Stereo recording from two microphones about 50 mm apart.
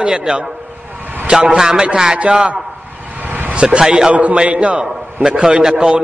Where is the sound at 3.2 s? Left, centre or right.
Right.